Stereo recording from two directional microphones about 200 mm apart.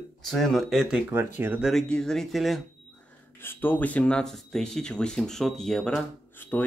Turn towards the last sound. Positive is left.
turn(degrees=10)  # may be behind; listen again after turning